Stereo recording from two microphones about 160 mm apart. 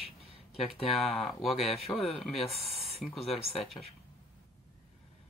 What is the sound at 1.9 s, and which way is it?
Speech, 15° left (ahead or behind).